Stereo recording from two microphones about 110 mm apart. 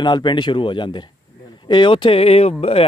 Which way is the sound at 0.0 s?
45° left (ahead or behind).